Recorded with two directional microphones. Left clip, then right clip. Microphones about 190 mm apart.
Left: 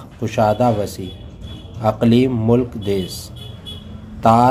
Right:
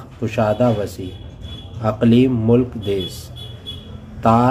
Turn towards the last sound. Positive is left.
turn(degrees=15)  # may be behind; listen again after turning